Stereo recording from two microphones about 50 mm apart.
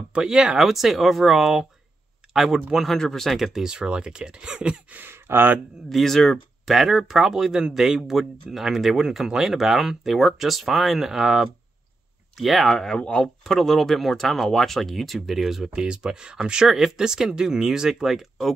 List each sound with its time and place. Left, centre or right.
0.1 s speech: centre
3.6 s speech: centre
4.9 s speech: right
5.9 s speech: centre
12.7 s speech: centre
15.8 s speech: centre